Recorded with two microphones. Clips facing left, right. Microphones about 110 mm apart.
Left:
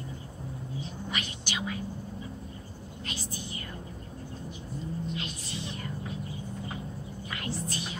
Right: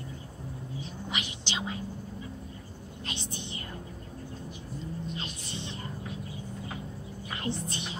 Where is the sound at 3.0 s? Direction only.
25° right (ahead or behind).